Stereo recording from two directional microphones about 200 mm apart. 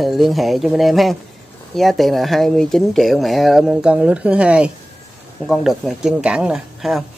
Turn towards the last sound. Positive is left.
turn(degrees=0)  # may be behind; listen again after turning